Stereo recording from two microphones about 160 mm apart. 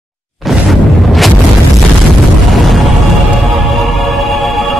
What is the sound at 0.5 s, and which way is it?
Boom, centre (ahead or behind).